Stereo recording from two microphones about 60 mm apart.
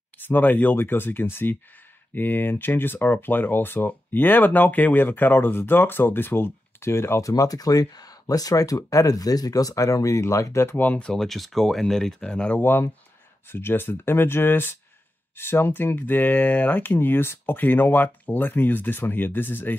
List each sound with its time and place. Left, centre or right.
0.2 s speech: left
7.2 s speech: left
10.8 s speech: left
11.1 s speech: centre
12.2 s speech: centre
12.5 s speech: left